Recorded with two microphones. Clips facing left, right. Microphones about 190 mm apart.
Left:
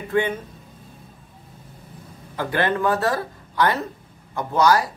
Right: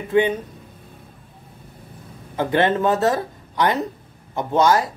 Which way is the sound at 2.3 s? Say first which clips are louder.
Right 4 dB; 20° right (ahead or behind).